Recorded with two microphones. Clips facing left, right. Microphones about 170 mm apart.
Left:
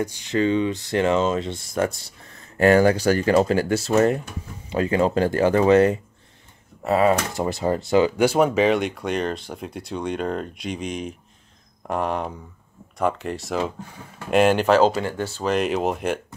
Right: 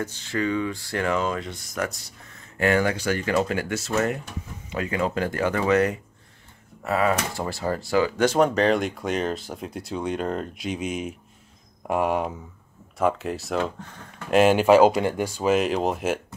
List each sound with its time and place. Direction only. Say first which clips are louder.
0.0 s speech: left 5 dB; 15° left (ahead or behind)
8.2 s speech: left 2 dB; 10° left (ahead or behind)
14.3 s speech: right 1 dB; 5° right (ahead or behind)